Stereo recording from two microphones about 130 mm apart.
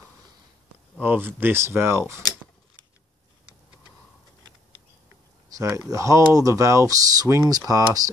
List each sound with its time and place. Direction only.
0.9 s speech: 15° right (ahead or behind)
5.5 s a sound: 25° right (ahead or behind)
5.9 s speech: 25° right (ahead or behind)